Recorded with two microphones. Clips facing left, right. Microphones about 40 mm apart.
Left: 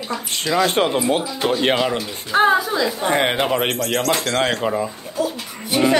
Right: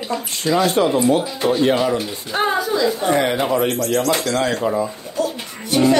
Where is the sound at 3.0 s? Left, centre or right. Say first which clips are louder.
Right 1 dB; left.